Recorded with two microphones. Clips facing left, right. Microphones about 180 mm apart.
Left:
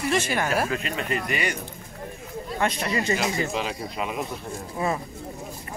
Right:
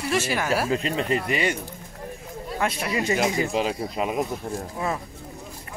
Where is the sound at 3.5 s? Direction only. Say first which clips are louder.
Right 4 dB; 35° right (ahead or behind).